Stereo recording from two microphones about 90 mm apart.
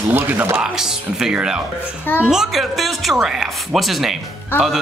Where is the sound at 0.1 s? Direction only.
20° right (ahead or behind).